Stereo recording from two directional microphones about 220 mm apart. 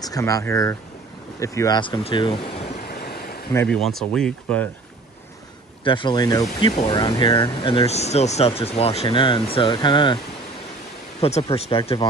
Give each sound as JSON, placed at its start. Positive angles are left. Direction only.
{"t": 0.0, "sound": "speech", "side_deg": 15}
{"t": 2.9, "sound": "a sound", "side_deg": 45}
{"t": 3.5, "sound": "speech", "side_deg": 5}
{"t": 5.9, "sound": "speech", "side_deg": 20}
{"t": 11.1, "sound": "speech", "side_deg": 30}